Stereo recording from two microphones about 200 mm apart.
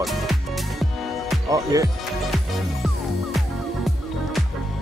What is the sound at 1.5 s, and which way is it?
Speech, 15° right (ahead or behind).